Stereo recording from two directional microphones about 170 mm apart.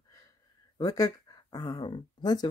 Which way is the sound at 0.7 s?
20° left (ahead or behind).